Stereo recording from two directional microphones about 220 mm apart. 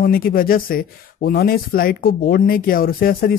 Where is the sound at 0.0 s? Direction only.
40° left (ahead or behind).